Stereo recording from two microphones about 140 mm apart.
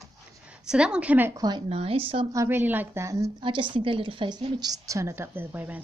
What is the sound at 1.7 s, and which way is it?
Speech, 45° right (ahead or behind).